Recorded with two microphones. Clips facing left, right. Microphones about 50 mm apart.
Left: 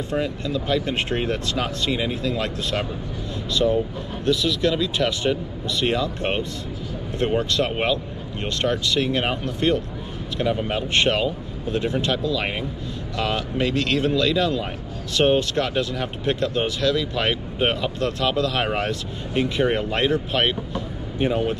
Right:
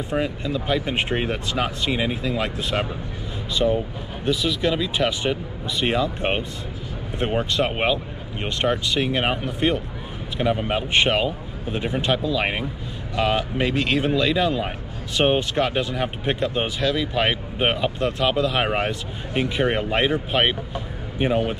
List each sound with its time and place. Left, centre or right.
0.1 s speech: centre